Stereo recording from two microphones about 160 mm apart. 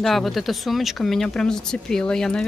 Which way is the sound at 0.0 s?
Centre (ahead or behind).